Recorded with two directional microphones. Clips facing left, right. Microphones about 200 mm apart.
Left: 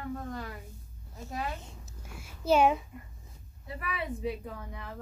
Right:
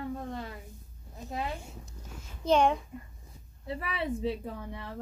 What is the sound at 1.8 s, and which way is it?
A child's voice, 10° left (ahead or behind).